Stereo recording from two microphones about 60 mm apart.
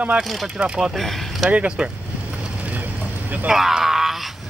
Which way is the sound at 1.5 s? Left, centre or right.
Centre.